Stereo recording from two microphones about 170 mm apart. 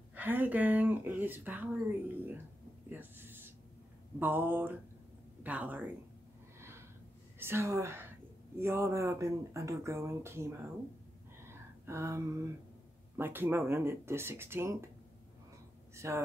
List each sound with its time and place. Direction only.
0.1 s speech: 10° right (ahead or behind)
2.9 s a sound: 10° right (ahead or behind)
4.2 s speech: 10° right (ahead or behind)
7.3 s a woman's voice: 15° right (ahead or behind)
11.4 s a sound: 15° right (ahead or behind)
13.2 s speech: 15° right (ahead or behind)
15.9 s speech: 15° right (ahead or behind)